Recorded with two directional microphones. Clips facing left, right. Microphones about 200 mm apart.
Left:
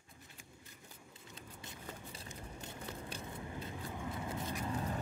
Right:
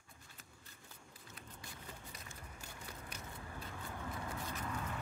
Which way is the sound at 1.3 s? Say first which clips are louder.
Left 2 dB; 25° left (ahead or behind).